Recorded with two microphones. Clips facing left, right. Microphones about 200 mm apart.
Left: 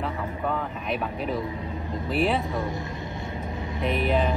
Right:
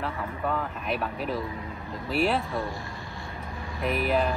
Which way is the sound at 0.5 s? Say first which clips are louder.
Even; centre (ahead or behind).